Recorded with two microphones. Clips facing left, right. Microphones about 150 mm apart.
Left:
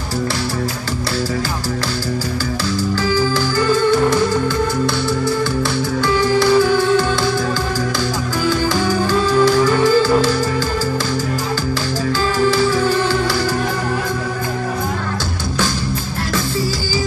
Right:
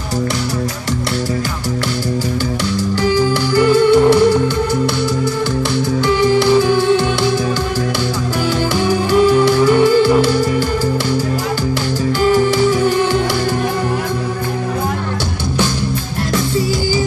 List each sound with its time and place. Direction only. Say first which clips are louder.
3.0 s music: right 4 dB; 20° right (ahead or behind)
6.0 s music: right 2 dB; 20° right (ahead or behind)
9.1 s music: right 3 dB; 20° right (ahead or behind)
12.3 s music: right 4 dB; 20° right (ahead or behind)